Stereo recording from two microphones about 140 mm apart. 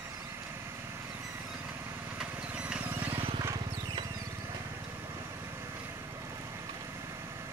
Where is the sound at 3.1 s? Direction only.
40° right (ahead or behind).